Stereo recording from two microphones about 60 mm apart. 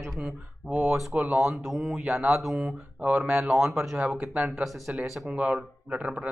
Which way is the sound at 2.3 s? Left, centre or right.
Centre.